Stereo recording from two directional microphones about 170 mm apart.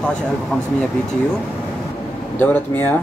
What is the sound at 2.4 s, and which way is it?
Speech, 10° left (ahead or behind).